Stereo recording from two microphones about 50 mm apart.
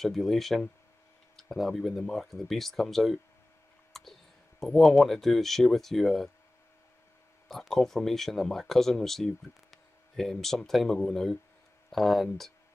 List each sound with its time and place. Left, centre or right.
0.0 s speech: centre
7.4 s speech: centre